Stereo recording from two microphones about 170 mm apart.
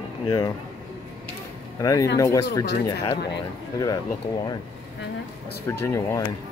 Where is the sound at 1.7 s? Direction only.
20° left (ahead or behind).